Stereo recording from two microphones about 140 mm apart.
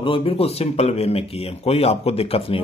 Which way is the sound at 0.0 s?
40° left (ahead or behind).